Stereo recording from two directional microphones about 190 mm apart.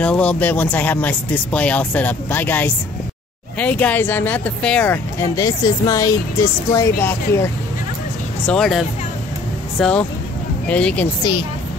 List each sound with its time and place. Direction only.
0.0 s speech: 5° left (ahead or behind)
8.5 s speech: centre (ahead or behind)